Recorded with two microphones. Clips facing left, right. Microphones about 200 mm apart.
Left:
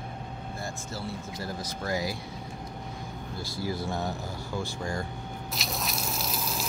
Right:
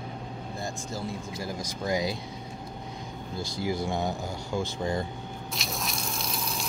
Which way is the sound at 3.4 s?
15° right (ahead or behind).